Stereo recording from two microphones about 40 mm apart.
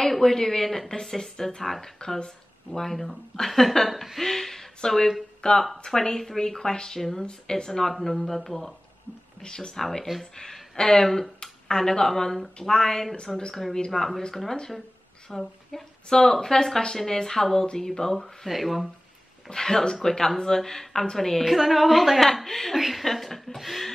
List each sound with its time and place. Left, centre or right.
0.0 s speech: centre
2.8 s speech: centre
7.2 s a woman's voice: centre
9.4 s speech: centre
9.8 s speech: centre
13.3 s a woman's voice: centre
15.2 s a woman's voice: centre
19.5 s speech: centre
21.5 s a woman's voice: centre